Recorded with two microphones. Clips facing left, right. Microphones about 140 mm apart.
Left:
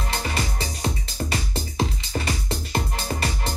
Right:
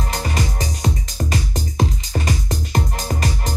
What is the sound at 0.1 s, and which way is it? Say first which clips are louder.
Music: right 1 dB; 40° right (ahead or behind).